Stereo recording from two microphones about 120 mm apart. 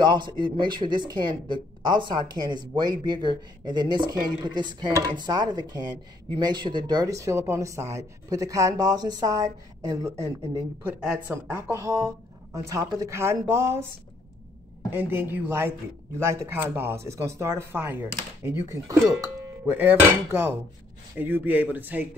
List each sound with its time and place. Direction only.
0.0 s speech: 40° right (ahead or behind)
10.8 s speech: 15° right (ahead or behind)
15.0 s dishes: 15° right (ahead or behind)
16.2 s speech: 20° right (ahead or behind)
19.6 s dishes: 15° right (ahead or behind)